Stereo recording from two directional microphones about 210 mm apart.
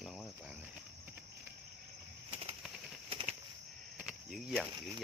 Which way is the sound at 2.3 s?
30° right (ahead or behind).